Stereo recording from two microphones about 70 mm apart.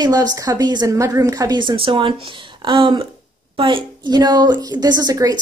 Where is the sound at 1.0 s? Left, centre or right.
Right.